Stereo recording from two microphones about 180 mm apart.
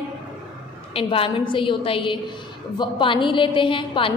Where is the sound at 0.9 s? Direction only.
30° left (ahead or behind).